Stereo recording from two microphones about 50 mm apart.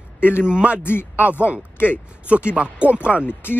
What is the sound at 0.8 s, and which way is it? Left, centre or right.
Speech, left.